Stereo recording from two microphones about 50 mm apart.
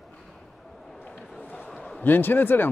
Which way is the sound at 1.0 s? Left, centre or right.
Left.